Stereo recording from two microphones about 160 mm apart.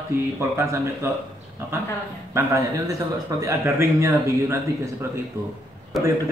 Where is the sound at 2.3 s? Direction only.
20° right (ahead or behind).